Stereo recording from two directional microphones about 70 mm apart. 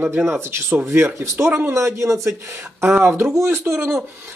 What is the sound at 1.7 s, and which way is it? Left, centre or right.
Speech, right.